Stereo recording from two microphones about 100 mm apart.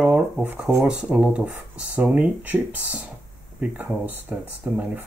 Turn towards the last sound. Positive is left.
turn(degrees=-15)  # may be behind; listen again after turning